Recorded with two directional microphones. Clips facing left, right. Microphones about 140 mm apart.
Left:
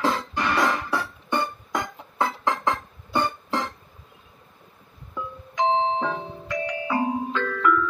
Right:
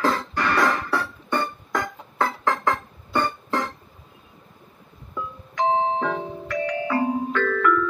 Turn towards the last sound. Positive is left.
turn(degrees=20)  # may be behind; listen again after turning